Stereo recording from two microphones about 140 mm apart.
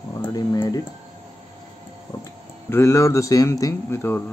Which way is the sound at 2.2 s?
20° left (ahead or behind).